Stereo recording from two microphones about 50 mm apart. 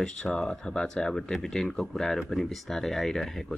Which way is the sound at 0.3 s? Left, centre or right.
Centre.